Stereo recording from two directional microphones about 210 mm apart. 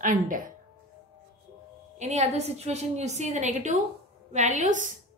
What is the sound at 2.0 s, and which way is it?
A woman's voice, 35° right (ahead or behind).